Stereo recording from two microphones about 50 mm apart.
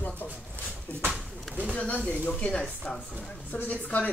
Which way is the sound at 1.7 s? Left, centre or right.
Left.